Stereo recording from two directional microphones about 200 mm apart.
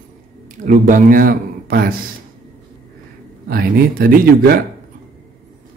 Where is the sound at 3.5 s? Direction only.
45° right (ahead or behind).